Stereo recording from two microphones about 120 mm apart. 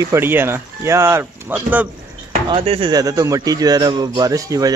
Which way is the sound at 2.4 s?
50° right (ahead or behind).